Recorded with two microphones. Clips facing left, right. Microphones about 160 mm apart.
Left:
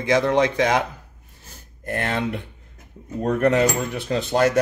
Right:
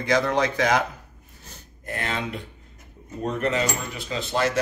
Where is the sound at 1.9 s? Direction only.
55° left (ahead or behind).